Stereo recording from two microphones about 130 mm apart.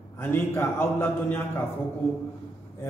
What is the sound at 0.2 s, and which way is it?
A man's voice, 15° left (ahead or behind).